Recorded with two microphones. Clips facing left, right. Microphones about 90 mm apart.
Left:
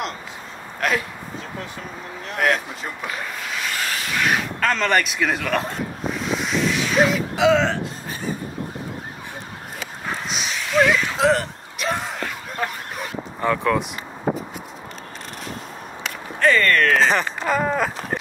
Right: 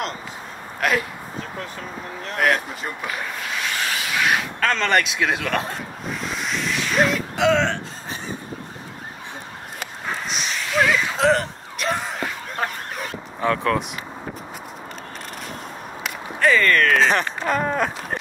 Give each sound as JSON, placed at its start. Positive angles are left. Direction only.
{"t": 0.7, "sound": "speech", "side_deg": 0}
{"t": 2.3, "sound": "speech", "side_deg": 0}
{"t": 10.2, "sound": "a sound", "side_deg": 0}
{"t": 12.9, "sound": "dog", "side_deg": 0}
{"t": 14.3, "sound": "a sound", "side_deg": 25}
{"t": 16.0, "sound": "speech", "side_deg": 0}